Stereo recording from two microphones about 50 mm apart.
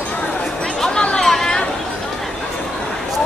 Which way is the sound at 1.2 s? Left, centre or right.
Centre.